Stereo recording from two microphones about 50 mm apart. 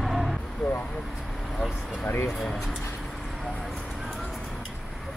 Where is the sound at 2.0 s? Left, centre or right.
Left.